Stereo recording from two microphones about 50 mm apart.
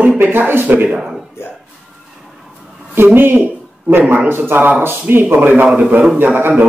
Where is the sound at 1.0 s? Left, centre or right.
Centre.